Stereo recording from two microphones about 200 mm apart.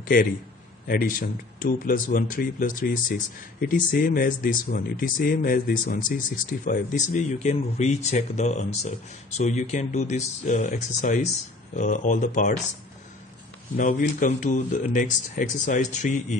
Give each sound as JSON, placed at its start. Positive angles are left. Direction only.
{"t": 0.1, "sound": "speech", "side_deg": 45}
{"t": 13.7, "sound": "speech", "side_deg": 40}